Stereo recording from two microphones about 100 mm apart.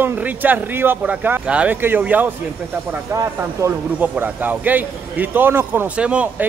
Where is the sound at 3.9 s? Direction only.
15° right (ahead or behind).